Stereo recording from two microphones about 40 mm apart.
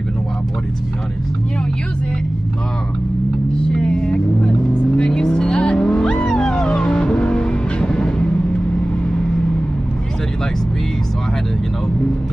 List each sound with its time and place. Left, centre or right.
3.7 s vehicle: centre
6.2 s music: centre